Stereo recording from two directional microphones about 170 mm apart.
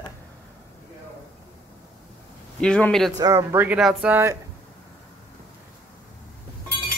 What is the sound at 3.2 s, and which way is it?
Speech, 15° right (ahead or behind).